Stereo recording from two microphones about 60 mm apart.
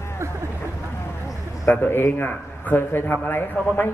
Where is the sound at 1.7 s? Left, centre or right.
Left.